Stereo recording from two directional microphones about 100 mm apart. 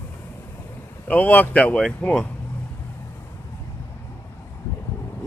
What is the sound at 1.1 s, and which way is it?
Speech, 15° left (ahead or behind).